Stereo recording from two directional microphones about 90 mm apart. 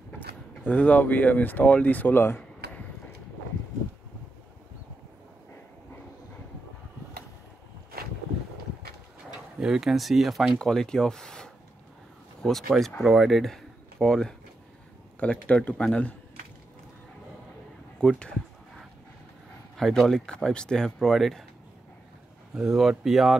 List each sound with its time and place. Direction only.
0.7 s speech: 15° left (ahead or behind)
9.6 s speech: 5° right (ahead or behind); by 16.2 s 15° left (ahead or behind)
18.0 s speech: 10° left (ahead or behind)
19.8 s speech: 5° left (ahead or behind)
22.5 s speech: 5° right (ahead or behind)